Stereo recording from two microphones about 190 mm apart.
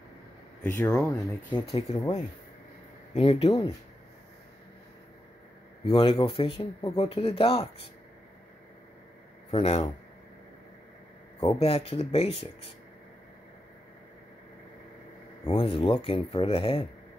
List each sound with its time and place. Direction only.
0.6 s speech: 10° left (ahead or behind)
1.7 s speech: 30° left (ahead or behind)
3.2 s speech: 30° left (ahead or behind)
5.9 s speech: 30° left (ahead or behind)
9.5 s speech: 30° left (ahead or behind)
11.4 s speech: 30° left (ahead or behind)
15.4 s speech: 30° left (ahead or behind)